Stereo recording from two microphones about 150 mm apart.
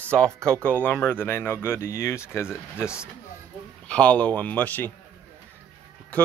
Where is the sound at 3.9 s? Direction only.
10° left (ahead or behind).